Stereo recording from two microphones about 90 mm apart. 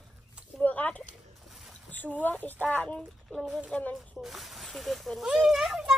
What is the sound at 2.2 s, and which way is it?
Speech, 20° left (ahead or behind).